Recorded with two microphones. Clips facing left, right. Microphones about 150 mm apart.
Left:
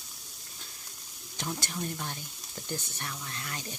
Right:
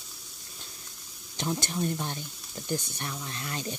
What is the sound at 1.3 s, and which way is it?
Speech, 20° right (ahead or behind).